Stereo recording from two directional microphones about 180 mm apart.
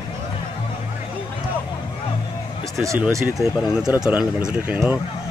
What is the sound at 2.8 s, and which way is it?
Speech, 15° right (ahead or behind).